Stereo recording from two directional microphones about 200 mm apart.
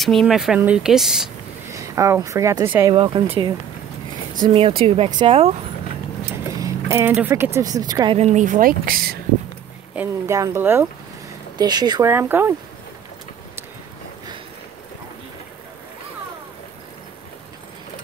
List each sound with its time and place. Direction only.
0.0 s speech: centre (ahead or behind)
1.7 s speech: 15° right (ahead or behind)
2.9 s speech: 25° right (ahead or behind)
6.6 s speech: 15° right (ahead or behind)
8.2 s speech: 35° right (ahead or behind)
9.9 s speech: 15° right (ahead or behind)